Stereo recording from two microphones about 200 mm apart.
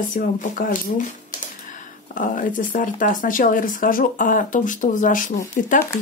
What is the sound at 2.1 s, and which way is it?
Speech, 40° left (ahead or behind).